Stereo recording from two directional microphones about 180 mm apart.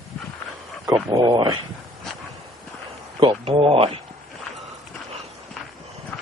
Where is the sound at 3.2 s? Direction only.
30° right (ahead or behind).